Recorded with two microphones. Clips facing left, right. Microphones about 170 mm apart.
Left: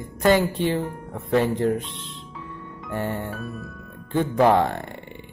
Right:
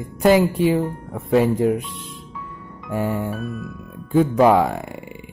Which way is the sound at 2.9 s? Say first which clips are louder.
Right 5 dB; 10° right (ahead or behind).